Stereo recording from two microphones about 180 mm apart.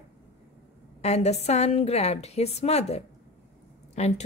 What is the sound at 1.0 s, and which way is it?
A woman's voice, 35° left (ahead or behind).